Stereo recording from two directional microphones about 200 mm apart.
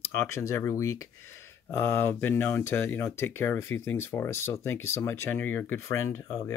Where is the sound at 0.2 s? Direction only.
15° left (ahead or behind).